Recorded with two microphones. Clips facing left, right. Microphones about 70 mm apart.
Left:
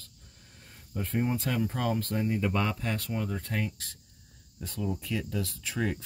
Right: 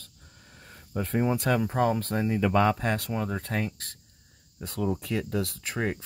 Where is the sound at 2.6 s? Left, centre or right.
Right.